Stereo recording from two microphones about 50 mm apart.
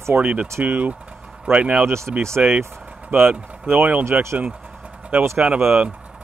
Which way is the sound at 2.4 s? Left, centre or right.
Right.